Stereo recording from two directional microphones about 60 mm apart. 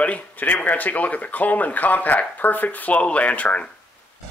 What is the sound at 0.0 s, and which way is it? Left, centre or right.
Speech, left.